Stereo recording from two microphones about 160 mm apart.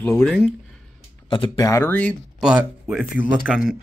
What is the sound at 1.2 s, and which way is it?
Speech, 30° left (ahead or behind).